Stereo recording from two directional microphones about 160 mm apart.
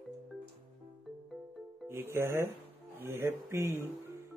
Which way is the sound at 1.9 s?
15° right (ahead or behind).